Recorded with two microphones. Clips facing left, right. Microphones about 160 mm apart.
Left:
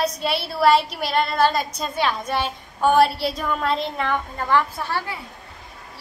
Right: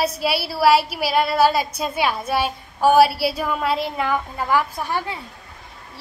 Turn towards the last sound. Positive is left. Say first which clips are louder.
# right 2 dB
turn(degrees=-15)  # may be behind; listen again after turning